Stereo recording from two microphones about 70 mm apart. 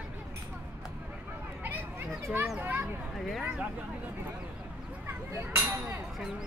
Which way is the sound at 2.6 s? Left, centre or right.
Right.